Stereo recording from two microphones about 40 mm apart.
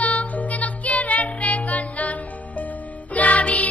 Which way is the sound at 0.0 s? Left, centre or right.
Left.